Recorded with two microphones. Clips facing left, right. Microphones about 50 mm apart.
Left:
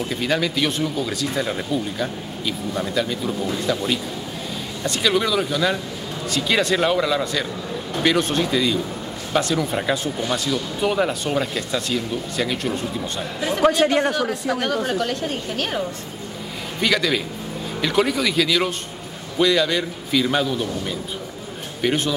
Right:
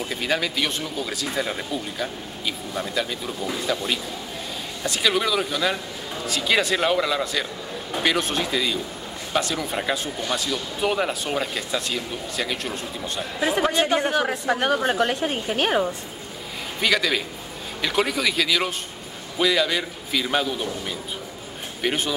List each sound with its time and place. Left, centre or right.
0.0 s a woman's voice: centre; by 15.9 s right
16.8 s speech: centre